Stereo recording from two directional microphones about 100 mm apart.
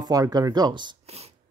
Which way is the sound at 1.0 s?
90° right.